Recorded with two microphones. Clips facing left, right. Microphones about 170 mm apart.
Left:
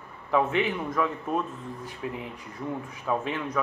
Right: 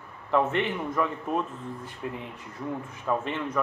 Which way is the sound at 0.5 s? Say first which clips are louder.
Left 1 dB; 5° left (ahead or behind).